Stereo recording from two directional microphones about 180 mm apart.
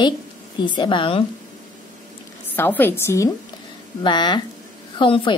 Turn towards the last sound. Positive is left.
turn(degrees=25)  # may be behind; listen again after turning